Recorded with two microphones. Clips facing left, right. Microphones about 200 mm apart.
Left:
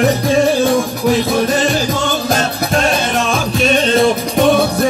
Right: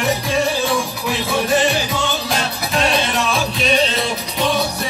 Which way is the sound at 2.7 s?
45° left (ahead or behind).